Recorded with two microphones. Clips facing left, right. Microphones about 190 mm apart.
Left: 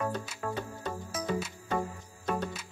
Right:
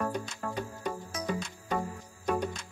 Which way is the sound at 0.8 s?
15° right (ahead or behind).